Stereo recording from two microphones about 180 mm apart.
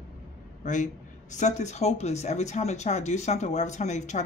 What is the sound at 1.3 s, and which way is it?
Speech, 40° left (ahead or behind).